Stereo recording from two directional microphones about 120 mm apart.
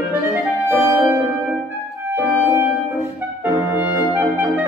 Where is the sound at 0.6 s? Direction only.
20° right (ahead or behind).